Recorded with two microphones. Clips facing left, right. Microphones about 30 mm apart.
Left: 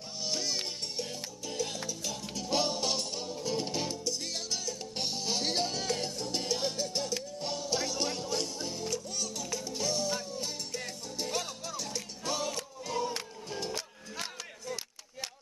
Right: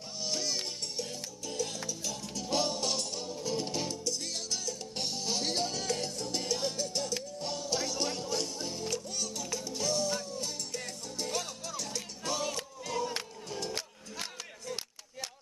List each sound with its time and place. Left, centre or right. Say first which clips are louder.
0.2 s music: even; centre